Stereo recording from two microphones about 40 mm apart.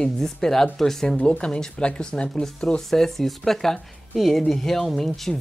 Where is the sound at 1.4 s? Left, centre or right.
Left.